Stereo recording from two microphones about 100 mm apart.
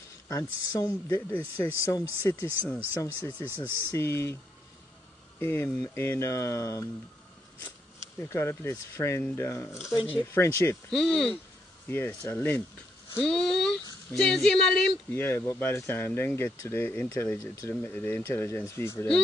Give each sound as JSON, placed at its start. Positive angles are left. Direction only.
{"t": 0.3, "sound": "speech", "side_deg": 35}
{"t": 2.2, "sound": "speech", "side_deg": 20}
{"t": 2.9, "sound": "speech", "side_deg": 30}
{"t": 5.4, "sound": "speech", "side_deg": 25}
{"t": 8.2, "sound": "speech", "side_deg": 25}
{"t": 10.9, "sound": "speech", "side_deg": 5}
{"t": 11.9, "sound": "speech", "side_deg": 25}
{"t": 13.2, "sound": "speech", "side_deg": 5}
{"t": 15.1, "sound": "speech", "side_deg": 25}